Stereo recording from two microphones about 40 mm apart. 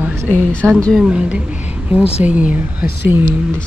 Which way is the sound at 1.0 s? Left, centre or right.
Right.